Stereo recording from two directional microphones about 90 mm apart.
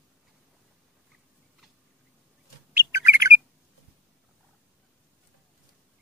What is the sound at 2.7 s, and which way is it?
Bird, 30° right (ahead or behind).